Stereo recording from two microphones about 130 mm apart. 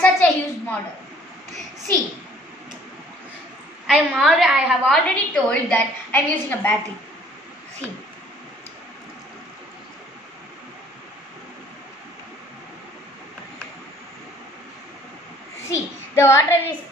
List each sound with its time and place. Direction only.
0.0 s a sound: 10° left (ahead or behind)
3.8 s a woman's voice: centre (ahead or behind)
15.7 s child singing: 20° left (ahead or behind)